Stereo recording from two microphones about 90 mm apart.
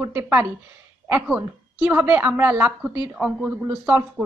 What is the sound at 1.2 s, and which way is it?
A woman's voice, 15° right (ahead or behind).